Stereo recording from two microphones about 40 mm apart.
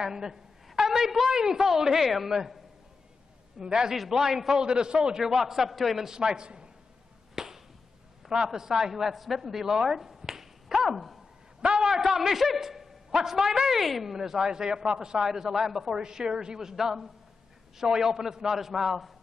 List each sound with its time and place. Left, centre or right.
0.0 s a man's voice: centre
3.5 s a woman's voice: centre
3.9 s a man's voice: centre
4.6 s a man's voice: right; by 6.0 s centre
6.0 s a woman's voice: centre
7.3 s a sound: centre
8.5 s speech: centre
11.6 s a sound: centre
11.9 s a man's voice: centre
15.2 s a man's voice: centre
15.9 s a man's voice: centre